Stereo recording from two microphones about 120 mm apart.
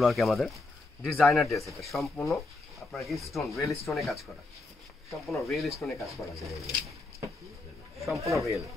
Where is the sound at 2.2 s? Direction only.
Centre (ahead or behind).